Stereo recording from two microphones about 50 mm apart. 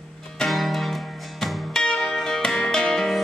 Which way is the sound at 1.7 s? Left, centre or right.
Centre.